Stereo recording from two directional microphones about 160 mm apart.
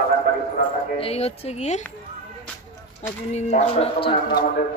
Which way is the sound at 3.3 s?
45° left (ahead or behind).